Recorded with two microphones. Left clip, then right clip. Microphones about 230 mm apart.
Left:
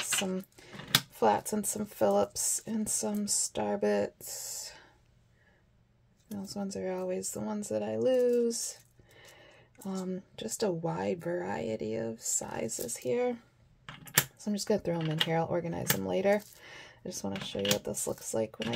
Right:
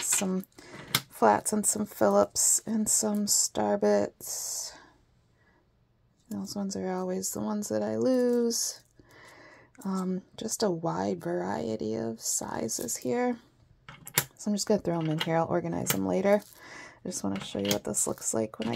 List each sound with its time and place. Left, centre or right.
0.0 s cutlery: centre
0.6 s speech: right
6.3 s speech: right
10.3 s speech: centre
14.4 s speech: right